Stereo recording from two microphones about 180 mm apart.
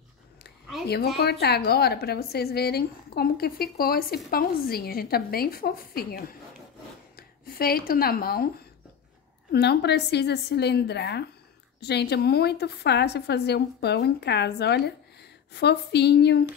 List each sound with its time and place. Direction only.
1.2 s speech: 65° left (ahead or behind)
9.5 s a woman's voice: 65° left (ahead or behind)